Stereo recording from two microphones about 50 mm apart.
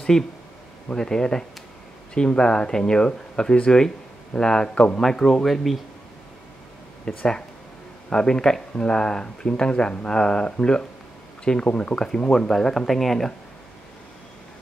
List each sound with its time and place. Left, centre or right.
0.1 s speech: centre
5.0 s speech: centre
7.1 s speech: centre